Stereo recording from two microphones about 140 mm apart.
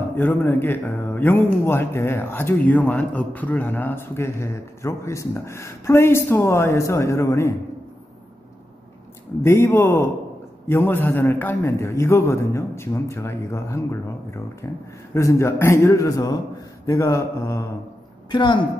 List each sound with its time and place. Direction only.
0.1 s a man's voice: 15° left (ahead or behind)
9.4 s a man's voice: 15° left (ahead or behind)
18.3 s a woman's voice: 35° left (ahead or behind)